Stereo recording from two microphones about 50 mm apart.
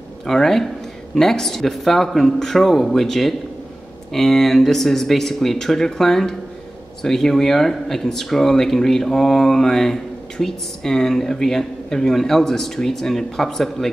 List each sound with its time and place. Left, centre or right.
0.3 s a man's voice: centre